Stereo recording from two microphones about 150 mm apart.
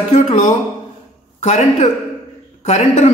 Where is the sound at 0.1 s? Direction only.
55° left (ahead or behind).